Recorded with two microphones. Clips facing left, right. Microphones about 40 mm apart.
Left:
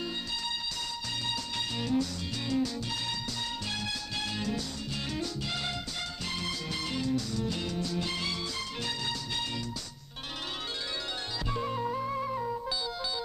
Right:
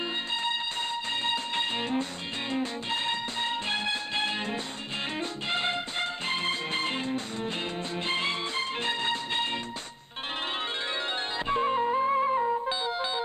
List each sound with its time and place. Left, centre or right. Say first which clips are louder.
1.2 s music: right 5 dB; right
11.4 s music: right 7 dB; right